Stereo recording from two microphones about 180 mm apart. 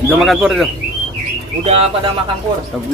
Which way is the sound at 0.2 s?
Centre (ahead or behind).